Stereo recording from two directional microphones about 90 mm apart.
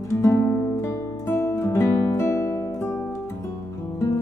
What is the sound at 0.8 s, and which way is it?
Music, 30° left (ahead or behind).